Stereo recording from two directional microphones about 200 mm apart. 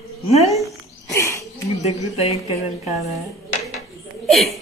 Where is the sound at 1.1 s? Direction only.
15° left (ahead or behind).